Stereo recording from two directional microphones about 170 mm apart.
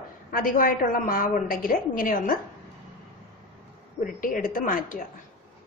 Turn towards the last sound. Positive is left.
turn(degrees=55)  # may be behind; listen again after turning